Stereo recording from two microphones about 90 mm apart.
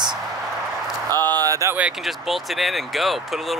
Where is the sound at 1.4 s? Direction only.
40° right (ahead or behind).